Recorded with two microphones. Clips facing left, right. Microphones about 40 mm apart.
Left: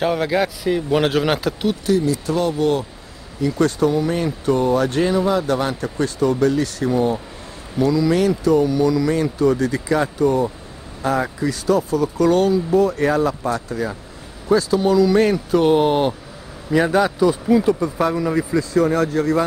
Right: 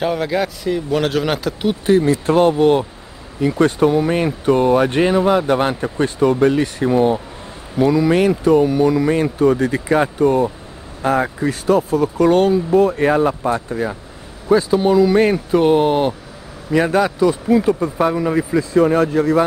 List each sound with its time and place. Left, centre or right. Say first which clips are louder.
0.0 s speech: even; centre
1.9 s speech: right 6 dB; right; by 15.6 s centre
15.6 s speech: right 1 dB; centre; by 19.4 s right